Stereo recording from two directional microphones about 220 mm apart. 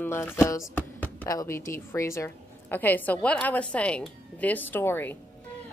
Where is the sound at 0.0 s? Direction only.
10° left (ahead or behind).